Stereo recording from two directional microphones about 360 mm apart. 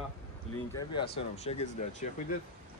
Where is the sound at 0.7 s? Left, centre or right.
Centre.